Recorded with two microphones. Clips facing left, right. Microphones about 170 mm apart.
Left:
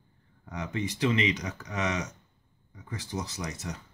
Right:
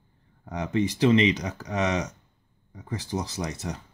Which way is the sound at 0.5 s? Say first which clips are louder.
Right 7 dB; 35° right (ahead or behind).